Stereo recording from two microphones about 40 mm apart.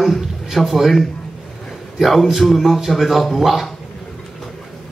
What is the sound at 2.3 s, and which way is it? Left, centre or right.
A man's voice, centre.